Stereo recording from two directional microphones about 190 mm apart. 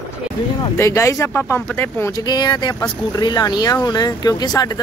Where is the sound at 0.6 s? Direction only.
15° left (ahead or behind).